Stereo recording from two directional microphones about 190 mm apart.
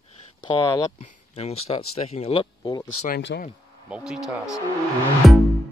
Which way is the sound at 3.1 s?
60° left (ahead or behind).